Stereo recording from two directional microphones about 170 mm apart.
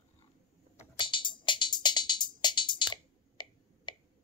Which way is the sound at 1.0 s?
30° left (ahead or behind).